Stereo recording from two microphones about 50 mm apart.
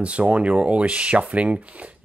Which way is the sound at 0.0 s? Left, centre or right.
Right.